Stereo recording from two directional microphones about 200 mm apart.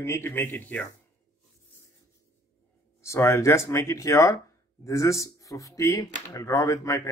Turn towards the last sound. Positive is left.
turn(degrees=15)  # may be behind; listen again after turning